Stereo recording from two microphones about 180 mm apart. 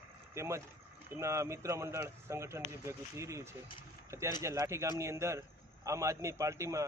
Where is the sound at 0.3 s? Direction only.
15° right (ahead or behind).